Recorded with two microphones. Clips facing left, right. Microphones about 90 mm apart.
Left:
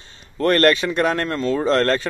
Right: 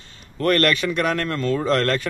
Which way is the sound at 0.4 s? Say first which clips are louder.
Left 3 dB; 30° left (ahead or behind).